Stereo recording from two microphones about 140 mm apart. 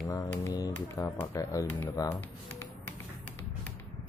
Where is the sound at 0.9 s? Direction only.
20° left (ahead or behind).